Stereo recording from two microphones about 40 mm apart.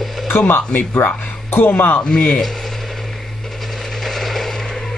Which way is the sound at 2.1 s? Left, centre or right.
Left.